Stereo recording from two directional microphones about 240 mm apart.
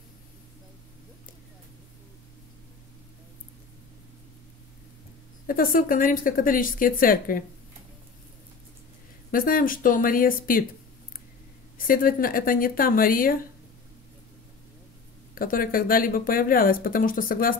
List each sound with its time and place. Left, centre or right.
5.5 s speech: left
9.3 s speech: left
11.9 s speech: left
15.3 s speech: left